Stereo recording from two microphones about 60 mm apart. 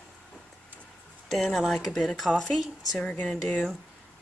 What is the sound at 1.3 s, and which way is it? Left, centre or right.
Speech, centre.